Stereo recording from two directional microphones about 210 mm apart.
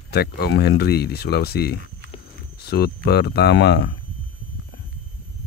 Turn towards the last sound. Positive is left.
turn(degrees=50)  # may be behind; listen again after turning